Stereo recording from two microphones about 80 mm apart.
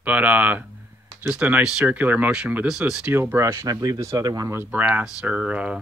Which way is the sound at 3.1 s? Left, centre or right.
Right.